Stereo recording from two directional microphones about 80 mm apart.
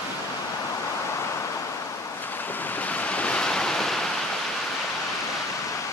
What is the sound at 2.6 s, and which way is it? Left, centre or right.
Waves, left.